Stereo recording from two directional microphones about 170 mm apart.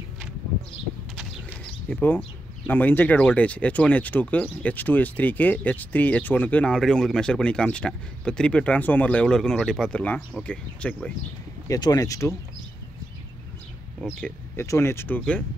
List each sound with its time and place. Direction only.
1.9 s speech: 10° left (ahead or behind)
11.6 s speech: 20° left (ahead or behind)
14.0 s speech: 15° left (ahead or behind)